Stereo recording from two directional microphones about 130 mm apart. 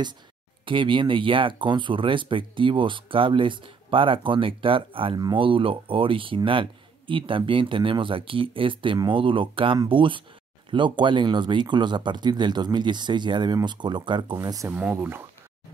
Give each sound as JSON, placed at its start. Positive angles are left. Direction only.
{"t": 0.7, "sound": "speech", "side_deg": -40}
{"t": 14.7, "sound": "speech", "side_deg": -10}